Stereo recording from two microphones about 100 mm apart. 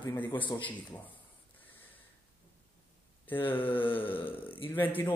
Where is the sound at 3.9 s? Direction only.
20° left (ahead or behind).